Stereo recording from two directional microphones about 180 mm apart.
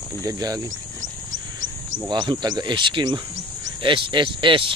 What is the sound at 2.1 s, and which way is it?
Speech, 25° right (ahead or behind).